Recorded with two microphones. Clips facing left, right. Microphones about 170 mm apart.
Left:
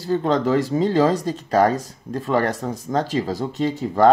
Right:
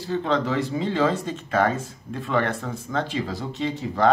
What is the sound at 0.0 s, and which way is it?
Speech, 45° left (ahead or behind).